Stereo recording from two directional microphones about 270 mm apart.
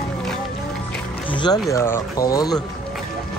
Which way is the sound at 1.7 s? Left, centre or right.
Centre.